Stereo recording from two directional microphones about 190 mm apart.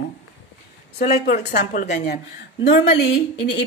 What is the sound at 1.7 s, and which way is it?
Speech, 40° left (ahead or behind).